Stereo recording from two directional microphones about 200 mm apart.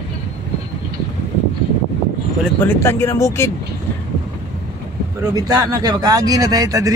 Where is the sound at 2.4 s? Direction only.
10° left (ahead or behind).